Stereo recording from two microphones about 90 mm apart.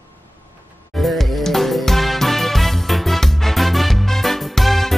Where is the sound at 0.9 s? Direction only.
Centre (ahead or behind).